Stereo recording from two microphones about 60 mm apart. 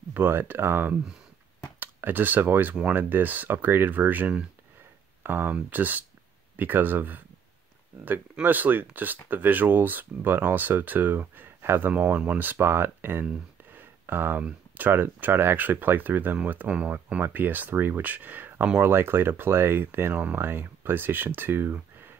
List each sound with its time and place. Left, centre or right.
0.1 s speech: right
11.9 s speech: right
13.2 s a sound: right
14.9 s speech: right
16.6 s speech: right
17.2 s speech: right